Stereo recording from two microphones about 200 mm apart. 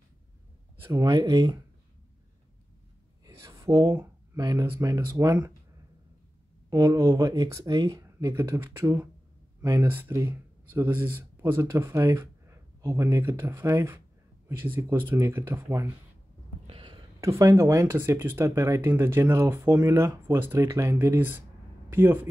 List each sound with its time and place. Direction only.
0.8 s speech: 20° right (ahead or behind)
3.3 s a sound: 15° right (ahead or behind)
4.5 s speech: 15° right (ahead or behind)
6.7 s speech: 20° right (ahead or behind)
16.6 s a sound: 30° right (ahead or behind)
17.4 s speech: 15° right (ahead or behind)